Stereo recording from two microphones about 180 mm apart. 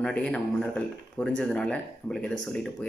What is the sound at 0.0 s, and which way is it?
Speech, 5° left (ahead or behind).